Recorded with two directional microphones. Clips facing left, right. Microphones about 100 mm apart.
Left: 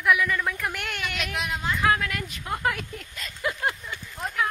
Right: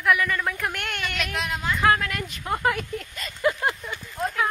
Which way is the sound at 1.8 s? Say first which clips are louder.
Right 3 dB; centre (ahead or behind).